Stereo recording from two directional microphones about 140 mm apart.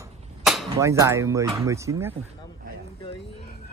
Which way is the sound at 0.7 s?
20° right (ahead or behind).